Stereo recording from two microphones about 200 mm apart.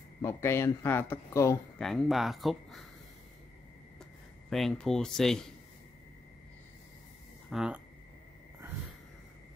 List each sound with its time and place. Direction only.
0.2 s speech: 15° left (ahead or behind)
1.8 s speech: centre (ahead or behind)
4.5 s speech: centre (ahead or behind)
7.4 s speech: 5° right (ahead or behind)